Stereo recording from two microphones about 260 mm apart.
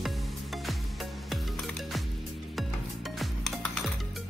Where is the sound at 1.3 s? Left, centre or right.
Centre.